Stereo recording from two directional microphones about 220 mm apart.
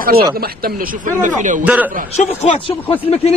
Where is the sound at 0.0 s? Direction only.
45° right (ahead or behind).